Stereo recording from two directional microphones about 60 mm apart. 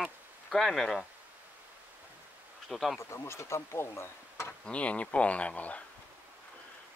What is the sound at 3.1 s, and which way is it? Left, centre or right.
Speech, left.